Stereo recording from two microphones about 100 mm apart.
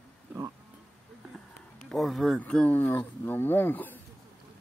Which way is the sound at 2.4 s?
15° left (ahead or behind).